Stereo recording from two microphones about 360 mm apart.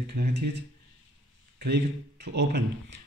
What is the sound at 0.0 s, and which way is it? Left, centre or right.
Speech, right.